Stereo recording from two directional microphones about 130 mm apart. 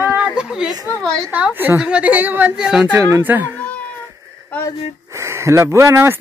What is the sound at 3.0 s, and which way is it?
Speech, 20° right (ahead or behind).